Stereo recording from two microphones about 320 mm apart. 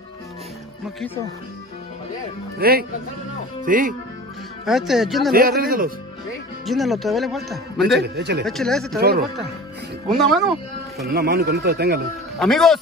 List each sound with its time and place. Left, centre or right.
2.6 s a man's voice: right
4.6 s a man's voice: centre
5.3 s a man's voice: right
6.6 s a man's voice: centre
7.8 s speech: right
8.5 s a man's voice: centre
10.0 s a man's voice: centre
11.1 s speech: right
12.4 s a man's voice: centre